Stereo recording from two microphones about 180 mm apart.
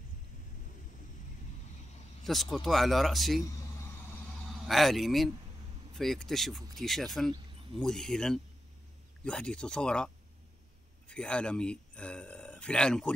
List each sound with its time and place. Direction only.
2.2 s speech: centre (ahead or behind)
4.6 s speech: centre (ahead or behind)